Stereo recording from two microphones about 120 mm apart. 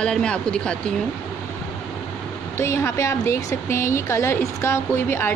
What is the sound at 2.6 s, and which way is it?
A woman's voice, 25° left (ahead or behind).